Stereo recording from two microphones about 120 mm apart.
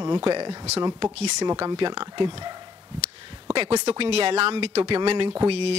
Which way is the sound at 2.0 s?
55° right (ahead or behind).